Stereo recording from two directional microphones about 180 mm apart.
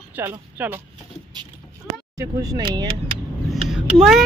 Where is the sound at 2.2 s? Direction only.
20° right (ahead or behind).